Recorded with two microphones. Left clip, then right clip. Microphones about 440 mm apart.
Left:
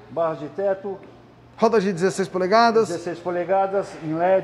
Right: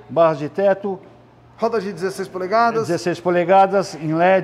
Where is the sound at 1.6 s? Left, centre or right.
Centre.